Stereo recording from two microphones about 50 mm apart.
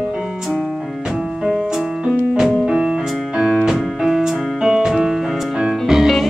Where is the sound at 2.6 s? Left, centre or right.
Centre.